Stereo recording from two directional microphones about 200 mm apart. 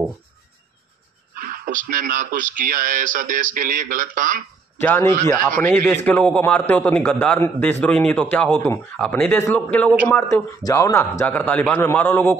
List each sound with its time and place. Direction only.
1.3 s speech: 45° right (ahead or behind)
4.7 s a man's voice: 10° left (ahead or behind)